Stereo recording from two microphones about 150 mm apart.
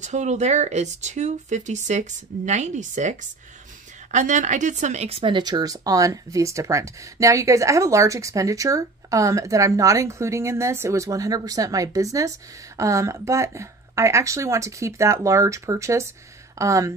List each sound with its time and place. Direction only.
0.0 s speech: 50° right (ahead or behind); by 16.9 s 20° right (ahead or behind)